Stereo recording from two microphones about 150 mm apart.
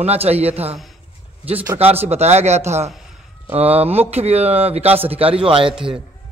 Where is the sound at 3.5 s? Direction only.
40° right (ahead or behind).